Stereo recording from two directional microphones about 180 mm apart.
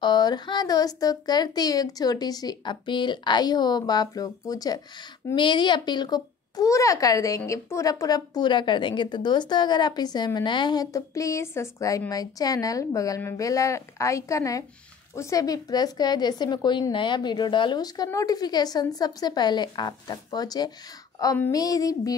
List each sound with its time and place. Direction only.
0.0 s a child's voice: 25° left (ahead or behind)